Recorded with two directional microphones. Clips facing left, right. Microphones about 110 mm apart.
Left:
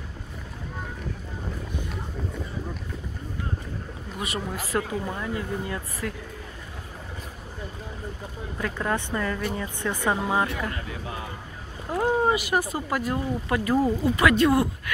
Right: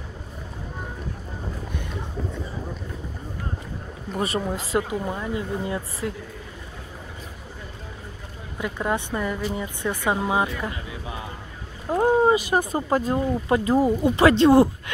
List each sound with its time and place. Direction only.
4.1 s speech: 35° right (ahead or behind)
4.5 s a woman's voice: 20° right (ahead or behind)
8.5 s a woman's voice: 15° right (ahead or behind)